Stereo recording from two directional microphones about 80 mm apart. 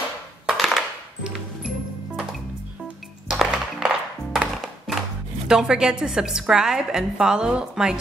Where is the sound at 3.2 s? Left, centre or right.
Centre.